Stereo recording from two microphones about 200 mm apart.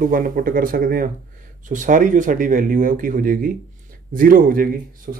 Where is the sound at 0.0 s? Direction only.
45° right (ahead or behind).